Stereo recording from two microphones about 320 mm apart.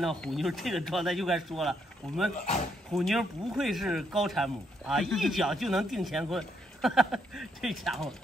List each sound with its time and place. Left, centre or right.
0.0 s speech: centre